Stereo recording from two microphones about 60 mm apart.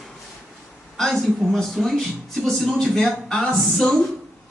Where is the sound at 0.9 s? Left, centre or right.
Centre.